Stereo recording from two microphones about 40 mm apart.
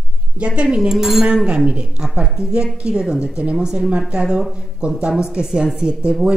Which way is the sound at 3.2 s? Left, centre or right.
Right.